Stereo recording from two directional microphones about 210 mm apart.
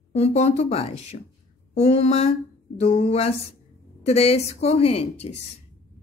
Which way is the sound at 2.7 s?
30° left (ahead or behind).